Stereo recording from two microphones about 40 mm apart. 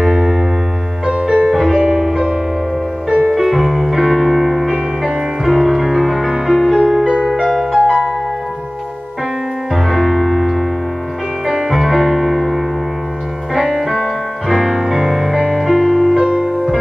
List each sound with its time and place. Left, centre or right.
0.0 s music: centre
1.5 s music: centre
1.8 s music: right
3.3 s music: centre
9.7 s music: centre
11.4 s music: centre
13.7 s music: centre
16.2 s music: centre